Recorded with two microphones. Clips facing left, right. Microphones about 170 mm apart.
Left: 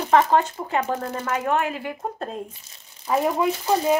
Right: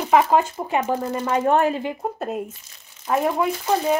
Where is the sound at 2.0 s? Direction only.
5° right (ahead or behind).